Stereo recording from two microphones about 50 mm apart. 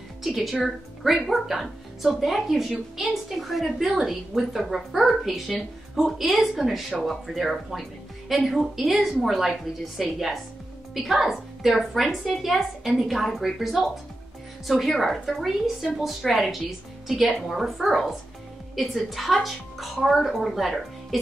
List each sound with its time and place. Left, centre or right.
0.2 s a woman's voice: centre